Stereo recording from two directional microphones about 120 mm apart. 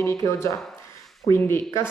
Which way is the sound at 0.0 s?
25° left (ahead or behind).